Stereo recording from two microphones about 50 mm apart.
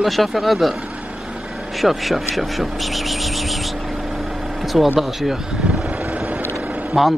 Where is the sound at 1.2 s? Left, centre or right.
Centre.